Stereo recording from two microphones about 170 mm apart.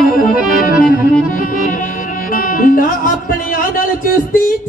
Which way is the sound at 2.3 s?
55° left (ahead or behind).